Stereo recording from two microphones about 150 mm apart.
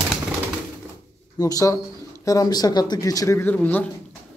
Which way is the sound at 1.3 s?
25° left (ahead or behind).